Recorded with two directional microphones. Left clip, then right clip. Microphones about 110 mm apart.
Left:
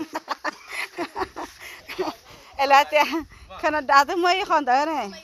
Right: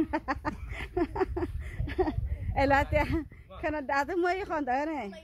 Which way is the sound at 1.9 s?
20° left (ahead or behind).